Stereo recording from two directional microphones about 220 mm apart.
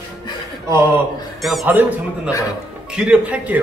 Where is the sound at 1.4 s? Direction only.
Centre (ahead or behind).